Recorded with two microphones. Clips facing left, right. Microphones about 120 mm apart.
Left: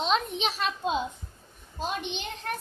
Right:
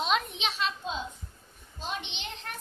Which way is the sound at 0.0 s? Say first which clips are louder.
Left 2 dB; 30° left (ahead or behind).